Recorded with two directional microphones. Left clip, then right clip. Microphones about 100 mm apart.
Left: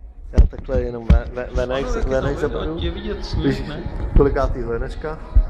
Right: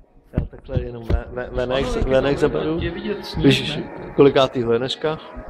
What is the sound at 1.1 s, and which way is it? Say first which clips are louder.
Speech: right 3 dB; 20° left (ahead or behind).